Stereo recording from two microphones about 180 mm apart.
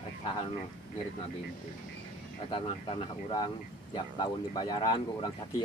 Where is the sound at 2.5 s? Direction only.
25° left (ahead or behind).